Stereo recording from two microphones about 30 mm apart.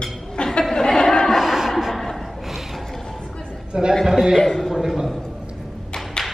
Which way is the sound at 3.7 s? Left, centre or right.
Right.